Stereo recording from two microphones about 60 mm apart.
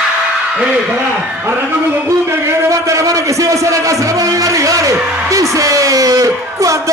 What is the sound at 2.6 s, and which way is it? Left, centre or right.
A man's voice, right.